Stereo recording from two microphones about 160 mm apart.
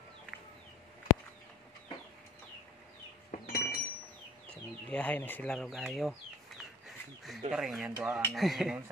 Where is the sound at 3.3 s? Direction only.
70° left (ahead or behind).